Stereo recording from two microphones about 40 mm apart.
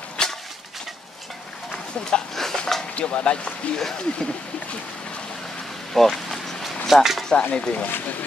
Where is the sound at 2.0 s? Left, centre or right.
Left.